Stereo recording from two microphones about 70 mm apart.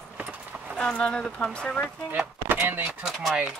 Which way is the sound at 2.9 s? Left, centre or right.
Centre.